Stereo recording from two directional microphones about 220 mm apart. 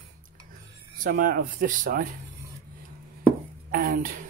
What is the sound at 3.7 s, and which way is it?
Speech, 40° right (ahead or behind).